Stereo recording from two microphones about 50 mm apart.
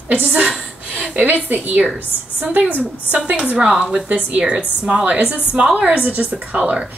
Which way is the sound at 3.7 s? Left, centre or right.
Centre.